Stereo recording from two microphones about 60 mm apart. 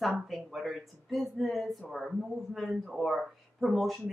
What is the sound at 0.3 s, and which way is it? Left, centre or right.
Speech, centre.